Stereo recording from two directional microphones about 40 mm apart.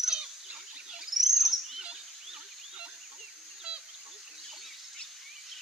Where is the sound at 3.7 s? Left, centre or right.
Right.